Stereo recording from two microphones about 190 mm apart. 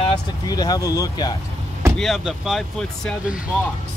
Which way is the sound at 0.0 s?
25° left (ahead or behind).